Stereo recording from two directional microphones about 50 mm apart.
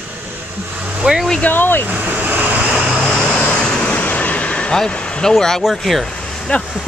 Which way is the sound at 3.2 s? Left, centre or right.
Left.